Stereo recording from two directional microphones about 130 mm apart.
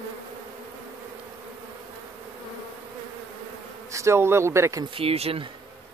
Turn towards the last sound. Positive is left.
turn(degrees=-50)  # may be behind; listen again after turning